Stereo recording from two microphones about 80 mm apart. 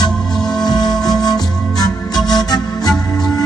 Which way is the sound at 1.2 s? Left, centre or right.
Left.